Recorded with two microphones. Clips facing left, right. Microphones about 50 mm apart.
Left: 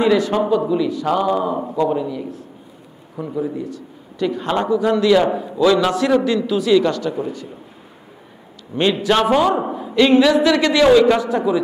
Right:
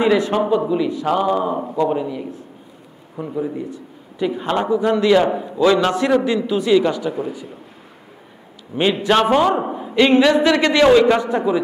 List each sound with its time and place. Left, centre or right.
0.0 s a man's voice: centre
5.3 s a man's voice: centre
5.8 s a man's voice: right
8.7 s a man's voice: right